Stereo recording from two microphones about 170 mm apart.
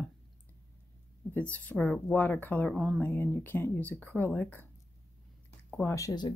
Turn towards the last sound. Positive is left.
turn(degrees=20)  # may be behind; listen again after turning